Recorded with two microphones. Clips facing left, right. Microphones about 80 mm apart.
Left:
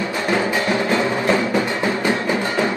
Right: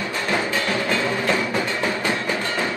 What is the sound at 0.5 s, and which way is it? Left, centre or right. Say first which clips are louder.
Music: left 4 dB; left.